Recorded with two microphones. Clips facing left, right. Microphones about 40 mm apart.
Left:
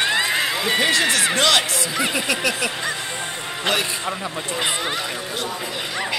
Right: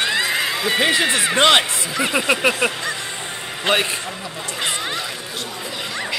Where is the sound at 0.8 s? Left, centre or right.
Centre.